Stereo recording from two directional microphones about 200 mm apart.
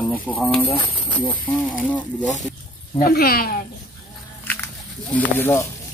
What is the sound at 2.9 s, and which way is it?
Speech, 50° left (ahead or behind).